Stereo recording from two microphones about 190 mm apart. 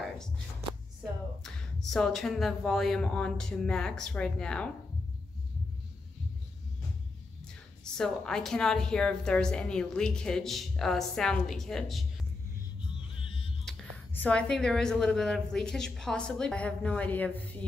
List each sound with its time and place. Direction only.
1.4 s a woman's voice: centre (ahead or behind)
7.8 s a woman's voice: 5° left (ahead or behind)
12.8 s music: 30° left (ahead or behind)
13.7 s a woman's voice: 5° left (ahead or behind)